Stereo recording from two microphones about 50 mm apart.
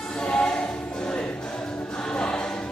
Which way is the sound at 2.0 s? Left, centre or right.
Centre.